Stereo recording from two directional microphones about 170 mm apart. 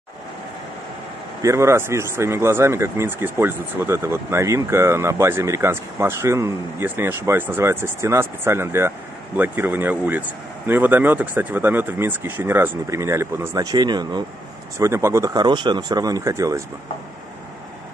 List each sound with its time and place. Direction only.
1.4 s speech: 15° right (ahead or behind)